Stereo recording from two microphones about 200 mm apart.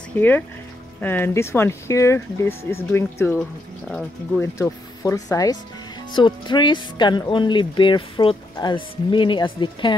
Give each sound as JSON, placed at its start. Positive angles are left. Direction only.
{"t": 0.1, "sound": "speech", "side_deg": 10}